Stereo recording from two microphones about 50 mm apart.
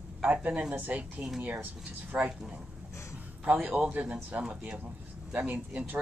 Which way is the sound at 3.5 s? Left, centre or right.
Right.